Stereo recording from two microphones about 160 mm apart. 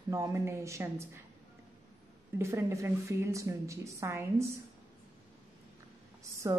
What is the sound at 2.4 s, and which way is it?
A woman's voice, 15° right (ahead or behind).